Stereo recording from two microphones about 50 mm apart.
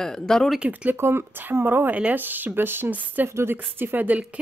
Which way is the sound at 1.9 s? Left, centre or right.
Right.